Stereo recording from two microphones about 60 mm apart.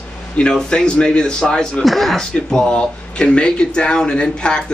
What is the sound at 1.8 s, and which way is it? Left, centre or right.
Speech, centre.